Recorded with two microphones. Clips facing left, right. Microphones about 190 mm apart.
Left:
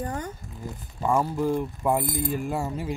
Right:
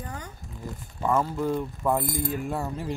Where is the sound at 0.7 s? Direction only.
10° left (ahead or behind).